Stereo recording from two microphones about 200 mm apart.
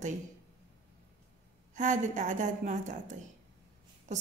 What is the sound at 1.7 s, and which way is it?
A woman's voice, 40° right (ahead or behind).